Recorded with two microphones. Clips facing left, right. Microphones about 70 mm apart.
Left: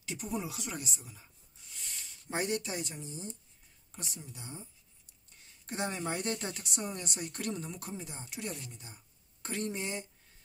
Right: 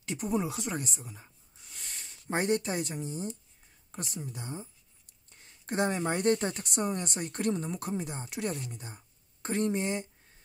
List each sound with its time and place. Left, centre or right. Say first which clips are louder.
0.0 s speech: right 6 dB; right
1.7 s speech: right 2 dB; right
9.4 s speech: right 7 dB; right